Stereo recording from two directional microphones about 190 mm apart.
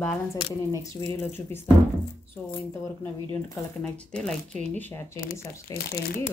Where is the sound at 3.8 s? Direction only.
5° left (ahead or behind).